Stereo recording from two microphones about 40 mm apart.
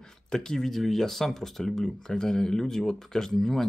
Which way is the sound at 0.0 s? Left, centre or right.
Centre.